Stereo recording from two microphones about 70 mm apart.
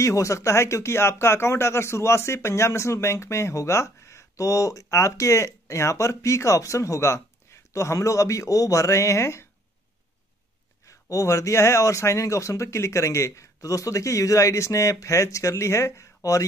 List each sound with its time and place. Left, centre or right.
0.0 s speech: left
10.9 s speech: left